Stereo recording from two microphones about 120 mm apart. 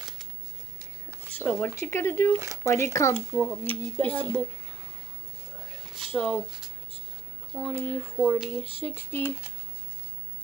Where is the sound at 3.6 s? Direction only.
15° left (ahead or behind).